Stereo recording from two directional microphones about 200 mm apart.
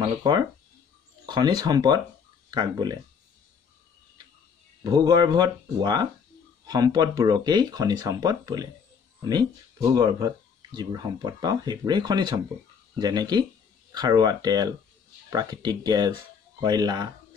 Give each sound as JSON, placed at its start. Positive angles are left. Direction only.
{"t": 0.0, "sound": "speech", "side_deg": -20}
{"t": 4.8, "sound": "speech", "side_deg": -20}